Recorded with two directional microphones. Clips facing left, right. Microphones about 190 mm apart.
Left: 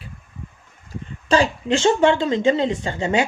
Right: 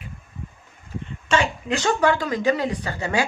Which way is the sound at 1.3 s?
30° left (ahead or behind).